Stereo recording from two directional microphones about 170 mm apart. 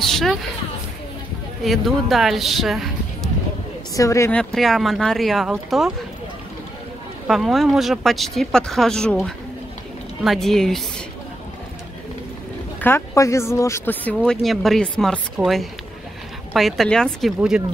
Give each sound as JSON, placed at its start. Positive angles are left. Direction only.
{"t": 0.0, "sound": "speech", "side_deg": 0}
{"t": 1.6, "sound": "speech", "side_deg": 0}
{"t": 3.9, "sound": "speech", "side_deg": 20}
{"t": 4.3, "sound": "speech", "side_deg": 5}
{"t": 7.2, "sound": "speech", "side_deg": 0}
{"t": 12.8, "sound": "speech", "side_deg": 15}
{"t": 14.1, "sound": "speech", "side_deg": 0}